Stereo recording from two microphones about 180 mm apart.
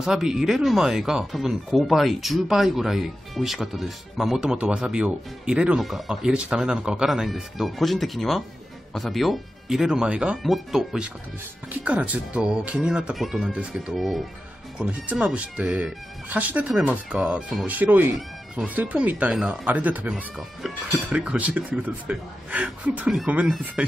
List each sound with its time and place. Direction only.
0.0 s speech: 5° right (ahead or behind)